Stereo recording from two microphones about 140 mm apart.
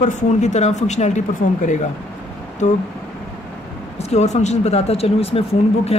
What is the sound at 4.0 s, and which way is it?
Speech, 50° left (ahead or behind).